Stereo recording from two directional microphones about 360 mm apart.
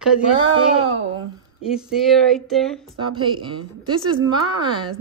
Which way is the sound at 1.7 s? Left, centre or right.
Centre.